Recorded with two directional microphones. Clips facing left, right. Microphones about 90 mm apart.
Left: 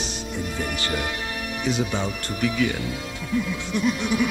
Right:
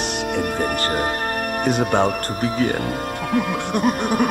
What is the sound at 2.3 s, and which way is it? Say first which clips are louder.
Music: right 3 dB; 40° right (ahead or behind).